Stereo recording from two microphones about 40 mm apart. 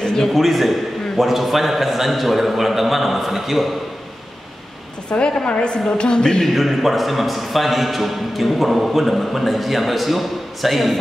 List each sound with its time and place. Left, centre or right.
0.0 s a sound: centre
0.3 s a man's voice: centre
5.1 s a woman's voice: left
6.4 s a man's voice: centre